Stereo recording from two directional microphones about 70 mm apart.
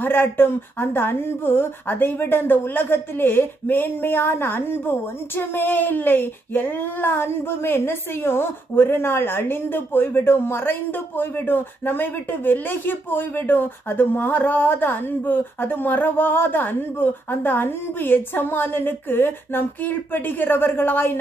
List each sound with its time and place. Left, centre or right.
0.0 s speech: left